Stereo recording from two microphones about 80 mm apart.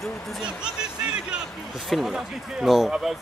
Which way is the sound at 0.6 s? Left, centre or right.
Centre.